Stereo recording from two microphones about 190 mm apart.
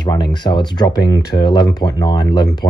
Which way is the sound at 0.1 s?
25° left (ahead or behind).